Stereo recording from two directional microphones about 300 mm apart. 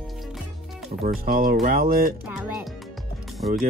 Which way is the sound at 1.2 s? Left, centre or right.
Right.